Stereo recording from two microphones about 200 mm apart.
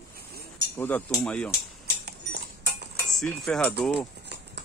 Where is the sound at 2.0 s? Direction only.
55° right (ahead or behind).